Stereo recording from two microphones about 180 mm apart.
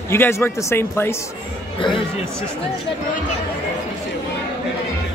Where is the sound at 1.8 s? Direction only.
30° left (ahead or behind).